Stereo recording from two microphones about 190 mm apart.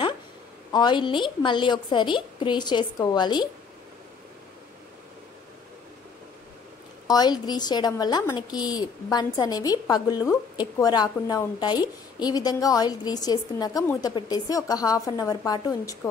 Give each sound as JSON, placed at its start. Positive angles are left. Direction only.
{"t": 0.7, "sound": "a woman's voice", "side_deg": 25}
{"t": 7.1, "sound": "a woman's voice", "side_deg": 20}